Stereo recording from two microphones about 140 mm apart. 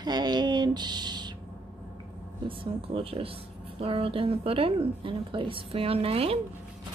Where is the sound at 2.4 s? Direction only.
40° right (ahead or behind).